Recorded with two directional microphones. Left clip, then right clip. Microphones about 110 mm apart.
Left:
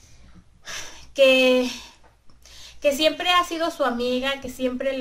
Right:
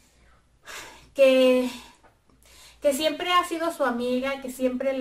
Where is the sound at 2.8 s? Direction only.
20° left (ahead or behind).